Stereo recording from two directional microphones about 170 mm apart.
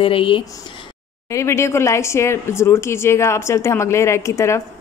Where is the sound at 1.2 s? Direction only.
15° left (ahead or behind).